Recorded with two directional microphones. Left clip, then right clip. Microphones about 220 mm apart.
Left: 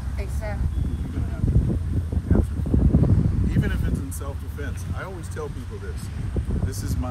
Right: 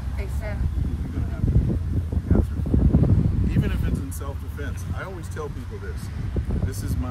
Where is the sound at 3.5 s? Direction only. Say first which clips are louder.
Even; 15° right (ahead or behind).